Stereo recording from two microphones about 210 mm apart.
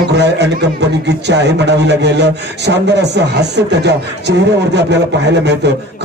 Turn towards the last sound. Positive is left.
turn(degrees=-55)  # may be behind; listen again after turning